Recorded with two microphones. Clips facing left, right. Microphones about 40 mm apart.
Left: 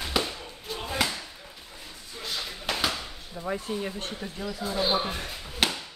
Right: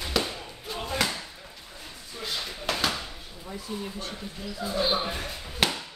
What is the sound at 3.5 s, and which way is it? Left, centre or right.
Speech, left.